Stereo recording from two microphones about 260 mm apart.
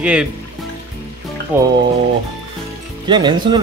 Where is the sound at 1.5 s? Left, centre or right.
Centre.